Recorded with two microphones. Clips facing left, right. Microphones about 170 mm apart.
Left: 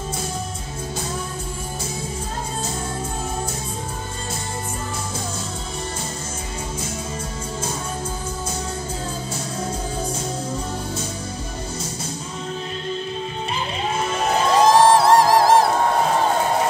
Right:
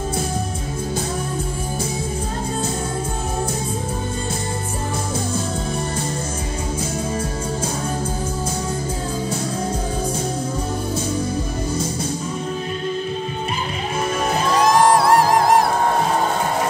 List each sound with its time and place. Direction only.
14.6 s music: 25° left (ahead or behind)